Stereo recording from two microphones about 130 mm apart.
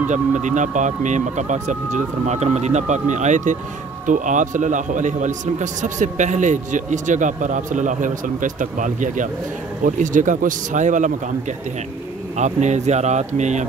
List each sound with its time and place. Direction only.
0.1 s a man's voice: 70° right (ahead or behind)
12.4 s a man's voice: 65° right (ahead or behind)